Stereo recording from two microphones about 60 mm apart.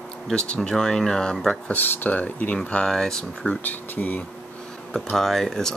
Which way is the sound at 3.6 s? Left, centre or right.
Left.